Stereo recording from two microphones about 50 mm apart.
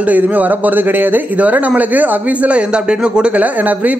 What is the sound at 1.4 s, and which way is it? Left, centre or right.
Speech, right.